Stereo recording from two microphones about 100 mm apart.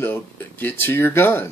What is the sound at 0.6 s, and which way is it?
Speech, 20° left (ahead or behind).